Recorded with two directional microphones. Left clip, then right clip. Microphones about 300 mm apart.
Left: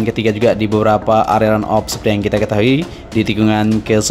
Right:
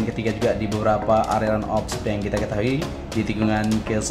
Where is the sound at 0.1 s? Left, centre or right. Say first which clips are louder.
Left 10 dB; left.